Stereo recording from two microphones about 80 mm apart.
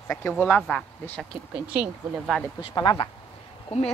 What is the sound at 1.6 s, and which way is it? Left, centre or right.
Speech, centre.